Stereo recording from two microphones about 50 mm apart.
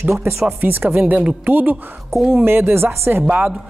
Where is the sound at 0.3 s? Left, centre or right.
Right.